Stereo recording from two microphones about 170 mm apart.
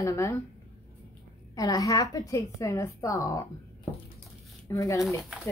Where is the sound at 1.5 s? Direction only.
20° left (ahead or behind).